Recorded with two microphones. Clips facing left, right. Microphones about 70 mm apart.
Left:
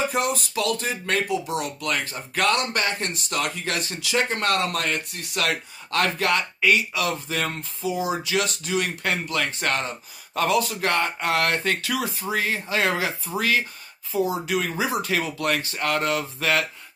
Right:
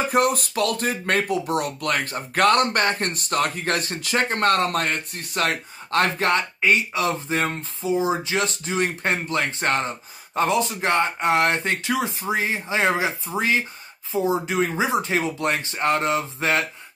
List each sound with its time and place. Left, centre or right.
0.1 s speech: right